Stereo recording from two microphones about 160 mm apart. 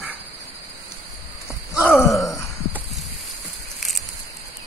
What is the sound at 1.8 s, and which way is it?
Groan, 15° left (ahead or behind).